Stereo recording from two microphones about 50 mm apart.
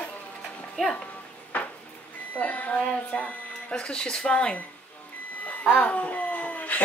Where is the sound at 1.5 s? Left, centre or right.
Left.